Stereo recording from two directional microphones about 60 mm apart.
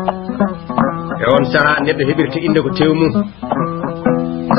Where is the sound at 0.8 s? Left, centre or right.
Centre.